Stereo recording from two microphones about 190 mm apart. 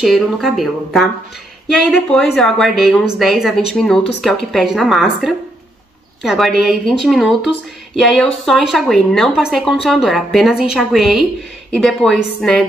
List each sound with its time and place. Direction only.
0.0 s speech: centre (ahead or behind)